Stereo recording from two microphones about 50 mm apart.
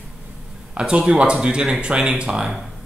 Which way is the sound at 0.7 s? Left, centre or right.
Centre.